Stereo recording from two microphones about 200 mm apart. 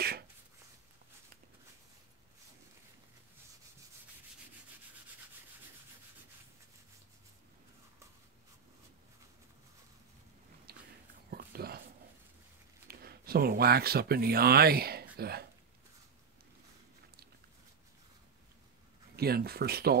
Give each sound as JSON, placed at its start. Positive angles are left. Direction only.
{"t": 10.7, "sound": "biting", "side_deg": -50}
{"t": 11.2, "sound": "a sound", "side_deg": -50}
{"t": 12.8, "sound": "speech", "side_deg": -50}
{"t": 19.1, "sound": "speech", "side_deg": -50}